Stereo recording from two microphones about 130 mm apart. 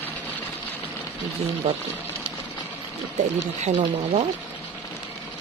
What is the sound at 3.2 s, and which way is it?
Speech, 60° right (ahead or behind).